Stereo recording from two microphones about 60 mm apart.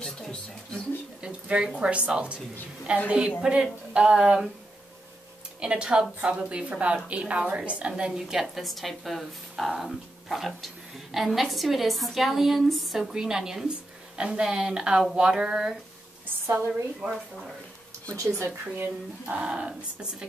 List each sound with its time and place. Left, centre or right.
0.0 s a sound: centre
1.2 s a sound: centre
1.8 s a woman's voice: centre
5.6 s a woman's voice: centre
8.0 s a woman's voice: centre
16.4 s a woman's voice: right
17.0 s speech: centre
18.6 s speech: right
19.4 s speech: centre